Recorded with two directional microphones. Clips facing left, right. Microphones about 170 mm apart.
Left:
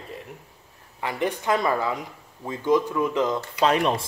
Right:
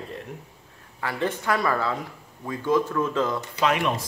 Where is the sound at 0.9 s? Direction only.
15° left (ahead or behind).